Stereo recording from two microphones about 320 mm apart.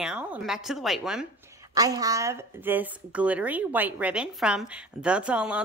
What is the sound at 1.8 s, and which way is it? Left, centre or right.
Speech, centre.